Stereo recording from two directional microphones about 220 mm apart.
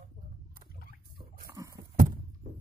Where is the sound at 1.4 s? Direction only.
15° right (ahead or behind).